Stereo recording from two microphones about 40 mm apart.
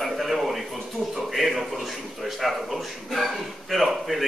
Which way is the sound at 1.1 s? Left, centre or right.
Centre.